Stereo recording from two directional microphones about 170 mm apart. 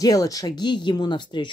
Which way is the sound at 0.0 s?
20° left (ahead or behind).